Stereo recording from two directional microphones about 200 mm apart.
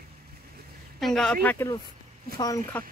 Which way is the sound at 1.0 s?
5° left (ahead or behind).